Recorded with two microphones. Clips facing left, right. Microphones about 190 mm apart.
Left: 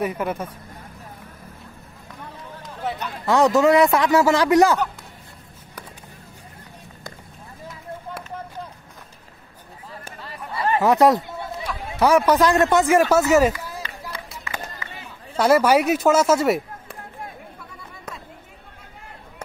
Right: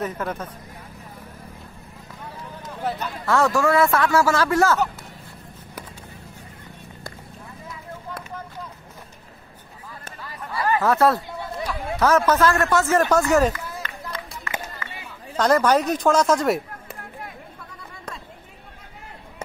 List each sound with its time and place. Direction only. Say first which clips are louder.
0.0 s speech: left 3 dB; 10° left (ahead or behind)
2.8 s speech: right 1 dB; centre (ahead or behind)
3.3 s speech: left 4 dB; 15° left (ahead or behind)
10.2 s chatter: even; 25° left (ahead or behind)
12.0 s a man's voice: left 2 dB; 15° left (ahead or behind)